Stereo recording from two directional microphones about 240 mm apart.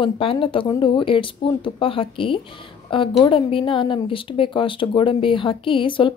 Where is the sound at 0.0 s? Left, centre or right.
Left.